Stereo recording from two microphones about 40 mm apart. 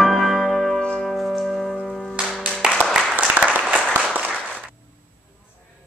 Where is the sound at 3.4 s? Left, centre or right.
Right.